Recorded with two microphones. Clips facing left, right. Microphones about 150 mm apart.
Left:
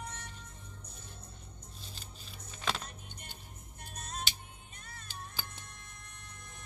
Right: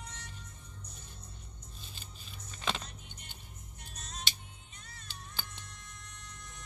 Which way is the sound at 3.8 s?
55° left (ahead or behind).